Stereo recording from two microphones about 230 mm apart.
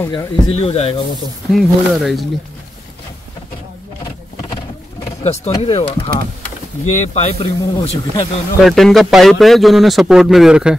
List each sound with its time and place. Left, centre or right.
0.0 s speech: centre
0.5 s a man's voice: left
1.5 s speech: centre
5.2 s a man's voice: left
8.6 s speech: centre